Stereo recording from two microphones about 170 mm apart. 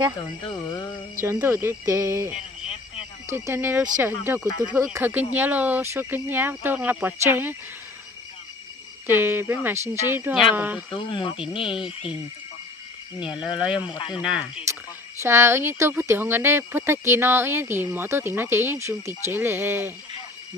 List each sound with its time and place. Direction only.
1.2 s speech: 15° right (ahead or behind)
9.2 s speech: 15° right (ahead or behind)
11.5 s speech: 30° left (ahead or behind)
13.2 s speech: 5° right (ahead or behind)
13.9 s speech: 30° left (ahead or behind)
14.7 s a sound: 15° right (ahead or behind)
15.2 s speech: 15° right (ahead or behind)